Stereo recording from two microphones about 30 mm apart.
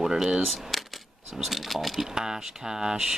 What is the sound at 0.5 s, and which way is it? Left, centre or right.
Speech, centre.